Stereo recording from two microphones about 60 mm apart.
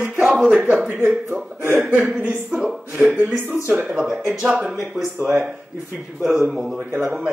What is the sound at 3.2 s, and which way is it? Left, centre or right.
Speech, right.